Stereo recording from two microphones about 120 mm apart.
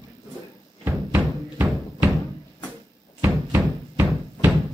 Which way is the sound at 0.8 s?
15° right (ahead or behind).